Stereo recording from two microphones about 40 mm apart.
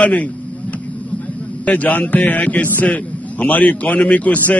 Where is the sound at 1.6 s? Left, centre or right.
Left.